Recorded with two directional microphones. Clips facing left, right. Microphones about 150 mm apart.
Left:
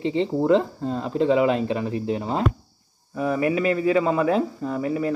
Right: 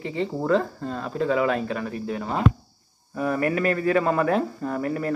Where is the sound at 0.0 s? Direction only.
20° left (ahead or behind).